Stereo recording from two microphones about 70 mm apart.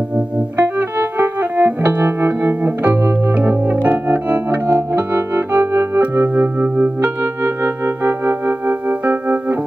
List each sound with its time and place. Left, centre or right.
0.6 s music: right